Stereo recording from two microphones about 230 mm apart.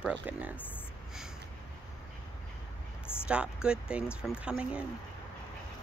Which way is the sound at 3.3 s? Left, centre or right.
Centre.